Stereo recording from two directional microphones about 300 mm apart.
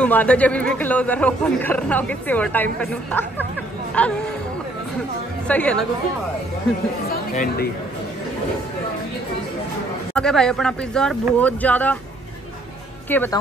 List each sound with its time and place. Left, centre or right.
0.0 s a man's voice: centre
5.5 s a man's voice: centre
7.1 s speech: left
10.1 s a man's voice: centre
13.1 s a woman's voice: centre